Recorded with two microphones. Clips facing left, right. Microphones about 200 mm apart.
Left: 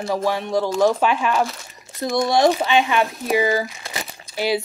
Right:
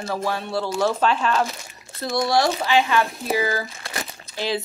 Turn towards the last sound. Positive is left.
turn(degrees=15)  # may be behind; listen again after turning